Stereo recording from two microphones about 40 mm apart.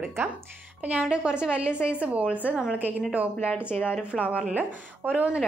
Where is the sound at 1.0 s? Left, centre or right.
Right.